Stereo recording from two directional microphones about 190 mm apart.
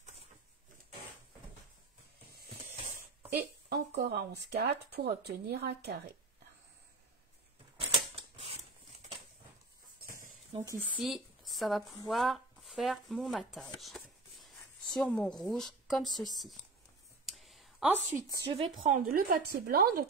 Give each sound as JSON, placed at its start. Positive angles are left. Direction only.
{"t": 2.6, "sound": "a sound", "side_deg": -15}
{"t": 3.6, "sound": "speech", "side_deg": -60}
{"t": 7.9, "sound": "typewriter", "side_deg": -30}
{"t": 11.0, "sound": "speech", "side_deg": 0}
{"t": 17.3, "sound": "a sound", "side_deg": 0}
{"t": 18.1, "sound": "speech", "side_deg": -15}
{"t": 18.5, "sound": "speech", "side_deg": -30}
{"t": 18.9, "sound": "a woman's voice", "side_deg": -50}